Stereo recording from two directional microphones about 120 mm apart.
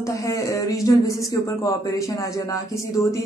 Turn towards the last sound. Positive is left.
turn(degrees=25)  # may be behind; listen again after turning